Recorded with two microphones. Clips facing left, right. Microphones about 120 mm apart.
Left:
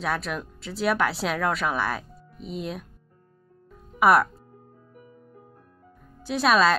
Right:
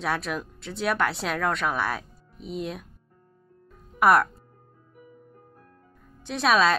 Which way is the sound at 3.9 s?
Centre (ahead or behind).